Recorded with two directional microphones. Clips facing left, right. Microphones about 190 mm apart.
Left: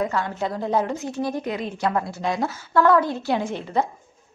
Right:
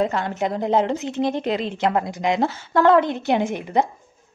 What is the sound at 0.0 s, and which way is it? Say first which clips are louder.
A woman's voice: right 3 dB; 25° right (ahead or behind).